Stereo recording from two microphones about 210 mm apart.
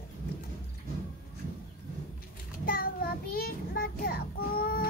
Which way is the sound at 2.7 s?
45° left (ahead or behind).